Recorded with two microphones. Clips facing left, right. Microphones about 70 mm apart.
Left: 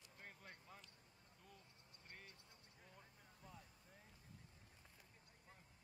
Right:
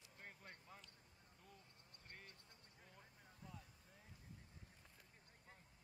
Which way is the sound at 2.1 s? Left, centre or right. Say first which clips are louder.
Even; centre.